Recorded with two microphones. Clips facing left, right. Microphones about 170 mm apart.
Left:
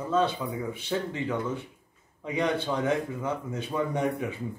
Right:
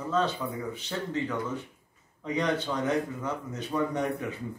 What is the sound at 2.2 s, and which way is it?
Speech, 10° left (ahead or behind).